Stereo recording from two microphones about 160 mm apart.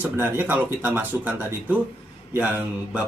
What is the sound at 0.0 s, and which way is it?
Speech, 15° right (ahead or behind).